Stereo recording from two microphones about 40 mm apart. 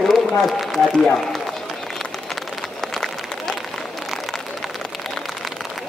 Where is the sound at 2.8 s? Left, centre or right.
Centre.